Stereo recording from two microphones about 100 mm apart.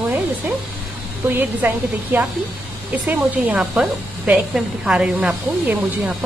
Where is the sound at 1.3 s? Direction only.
20° right (ahead or behind).